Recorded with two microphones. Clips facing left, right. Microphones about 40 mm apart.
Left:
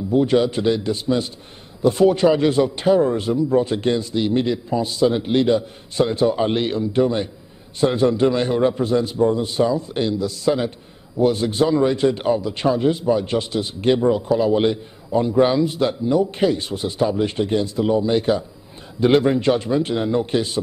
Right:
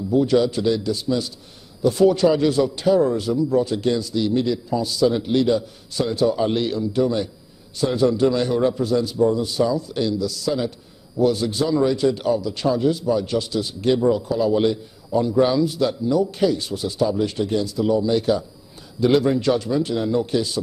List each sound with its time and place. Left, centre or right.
0.1 s a man's voice: left